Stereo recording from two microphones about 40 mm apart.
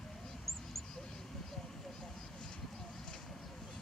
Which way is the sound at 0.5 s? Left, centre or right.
Centre.